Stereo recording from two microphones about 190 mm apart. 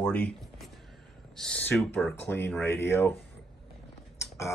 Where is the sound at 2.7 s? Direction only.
15° left (ahead or behind).